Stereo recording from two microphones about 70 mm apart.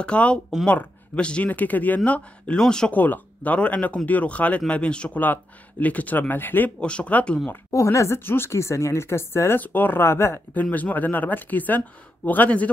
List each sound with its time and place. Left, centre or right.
0.0 s speech: centre
2.9 s speech: left
6.8 s speech: centre
7.7 s speech: left
8.2 s speech: left
9.6 s speech: left
10.5 s speech: left